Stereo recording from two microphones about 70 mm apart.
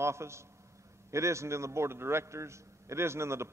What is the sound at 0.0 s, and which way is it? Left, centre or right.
A man's voice, right.